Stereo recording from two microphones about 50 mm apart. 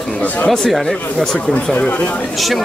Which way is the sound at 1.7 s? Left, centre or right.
Left.